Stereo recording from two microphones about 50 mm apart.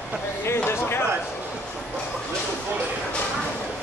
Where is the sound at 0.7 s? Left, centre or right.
Left.